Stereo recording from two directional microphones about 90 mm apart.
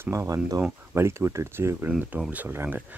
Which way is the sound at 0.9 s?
30° right (ahead or behind).